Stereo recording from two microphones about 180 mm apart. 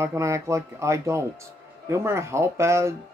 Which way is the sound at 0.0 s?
15° right (ahead or behind).